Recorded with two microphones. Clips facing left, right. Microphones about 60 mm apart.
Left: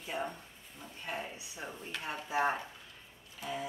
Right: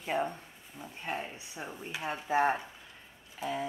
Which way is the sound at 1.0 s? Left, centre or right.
Right.